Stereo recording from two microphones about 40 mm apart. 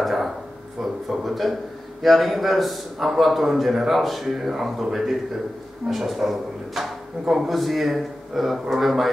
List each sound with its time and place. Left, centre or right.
0.0 s a sound: centre
1.0 s speech: centre
5.9 s speech: centre